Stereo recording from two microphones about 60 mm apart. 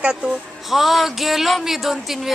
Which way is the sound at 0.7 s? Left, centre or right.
Centre.